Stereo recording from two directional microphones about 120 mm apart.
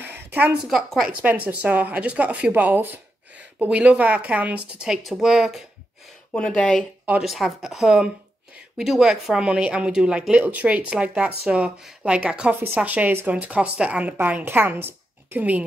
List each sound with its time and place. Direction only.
0.0 s a sound: 15° right (ahead or behind)
0.7 s a woman's voice: centre (ahead or behind)
1.2 s speech: 10° right (ahead or behind)
6.3 s speech: 10° left (ahead or behind)
7.1 s a woman's voice: 5° right (ahead or behind)